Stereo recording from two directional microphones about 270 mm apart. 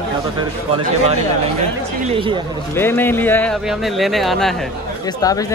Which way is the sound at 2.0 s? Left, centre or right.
Centre.